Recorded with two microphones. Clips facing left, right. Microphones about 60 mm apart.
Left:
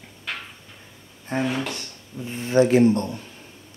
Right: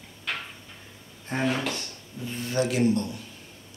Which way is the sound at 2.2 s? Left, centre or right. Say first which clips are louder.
Left 8 dB; left.